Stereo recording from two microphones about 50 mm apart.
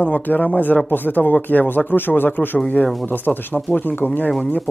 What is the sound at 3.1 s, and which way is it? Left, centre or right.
Speech, left.